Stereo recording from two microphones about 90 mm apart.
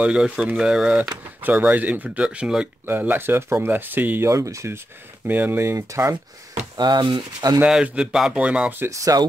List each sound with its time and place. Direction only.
0.0 s speech: 10° right (ahead or behind)
2.9 s speech: 25° right (ahead or behind)
4.3 s speech: 35° right (ahead or behind)
5.2 s speech: 20° right (ahead or behind)
6.8 s speech: 55° right (ahead or behind)
7.6 s speech: 10° right (ahead or behind)
8.9 s speech: 40° right (ahead or behind)